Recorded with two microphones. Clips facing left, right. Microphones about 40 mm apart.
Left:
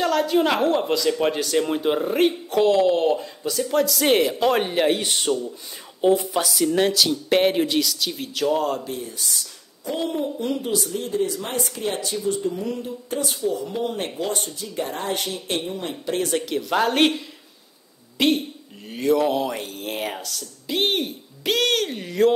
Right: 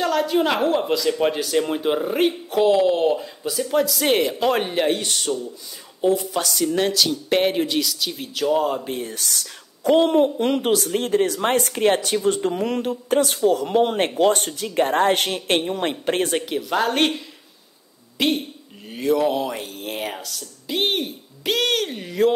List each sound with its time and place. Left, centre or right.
0.0 s speech: centre
5.0 s speech: left
6.3 s speech: centre
8.8 s speech: right
16.6 s speech: centre
18.1 s a woman's voice: centre